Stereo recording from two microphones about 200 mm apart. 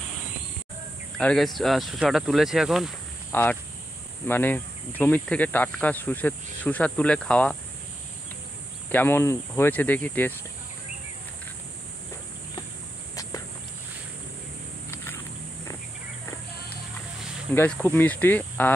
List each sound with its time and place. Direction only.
1.1 s speech: centre (ahead or behind)
3.3 s speech: 10° left (ahead or behind)
8.9 s speech: 10° left (ahead or behind)
13.1 s a sound: 15° left (ahead or behind)
17.6 s speech: 10° left (ahead or behind)